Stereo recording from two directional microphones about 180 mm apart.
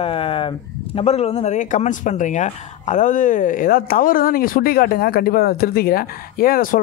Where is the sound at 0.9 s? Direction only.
35° left (ahead or behind).